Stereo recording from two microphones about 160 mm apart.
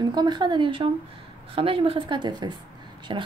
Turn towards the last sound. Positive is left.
turn(degrees=-30)  # may be behind; listen again after turning